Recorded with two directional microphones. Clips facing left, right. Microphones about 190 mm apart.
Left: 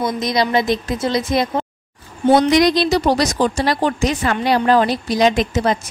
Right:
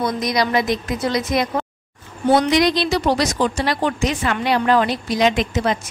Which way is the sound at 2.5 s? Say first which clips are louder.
Left 3 dB; 45° left (ahead or behind).